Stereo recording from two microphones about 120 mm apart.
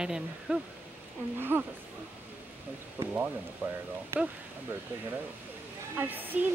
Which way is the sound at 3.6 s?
15° right (ahead or behind).